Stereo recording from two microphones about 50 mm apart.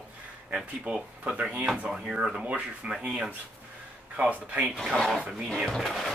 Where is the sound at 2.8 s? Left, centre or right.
Right.